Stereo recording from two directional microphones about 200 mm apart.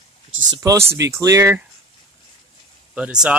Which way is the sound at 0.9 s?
15° right (ahead or behind).